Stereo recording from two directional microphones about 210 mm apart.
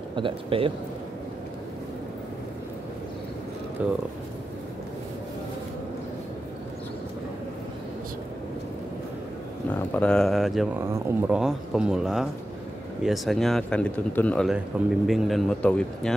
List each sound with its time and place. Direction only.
0.1 s speech: 25° right (ahead or behind)
3.8 s speech: 5° right (ahead or behind)
9.8 s speech: 5° left (ahead or behind)